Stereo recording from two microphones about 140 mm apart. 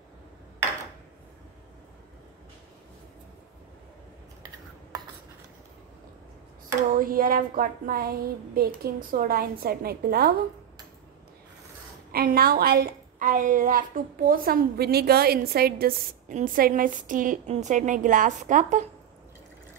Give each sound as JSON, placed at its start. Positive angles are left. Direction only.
{"t": 4.9, "sound": "writing", "side_deg": -25}
{"t": 6.9, "sound": "a woman's voice", "side_deg": -80}
{"t": 12.1, "sound": "a woman's voice", "side_deg": -90}
{"t": 17.5, "sound": "a woman's voice", "side_deg": -60}